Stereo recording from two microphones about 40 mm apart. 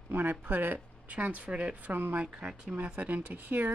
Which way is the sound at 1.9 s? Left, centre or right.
Right.